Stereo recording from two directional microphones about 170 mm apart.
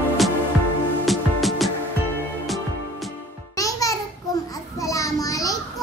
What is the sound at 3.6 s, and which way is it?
Music, 20° left (ahead or behind).